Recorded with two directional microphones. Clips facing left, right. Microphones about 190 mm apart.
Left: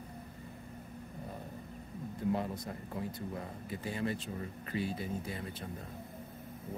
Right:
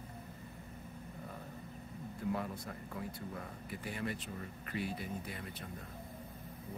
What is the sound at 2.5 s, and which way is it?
Speech, 40° left (ahead or behind).